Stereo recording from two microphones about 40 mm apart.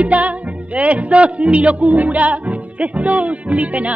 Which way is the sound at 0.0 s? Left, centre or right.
Right.